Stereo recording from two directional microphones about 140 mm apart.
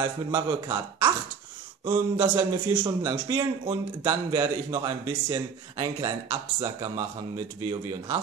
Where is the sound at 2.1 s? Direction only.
15° right (ahead or behind).